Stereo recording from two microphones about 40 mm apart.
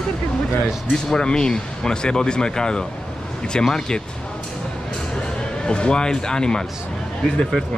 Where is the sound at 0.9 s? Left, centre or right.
Centre.